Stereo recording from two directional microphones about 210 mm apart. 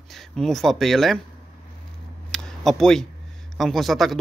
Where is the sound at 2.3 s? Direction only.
Centre (ahead or behind).